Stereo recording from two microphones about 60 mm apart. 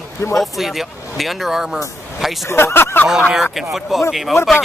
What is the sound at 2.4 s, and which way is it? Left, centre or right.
Speech, left.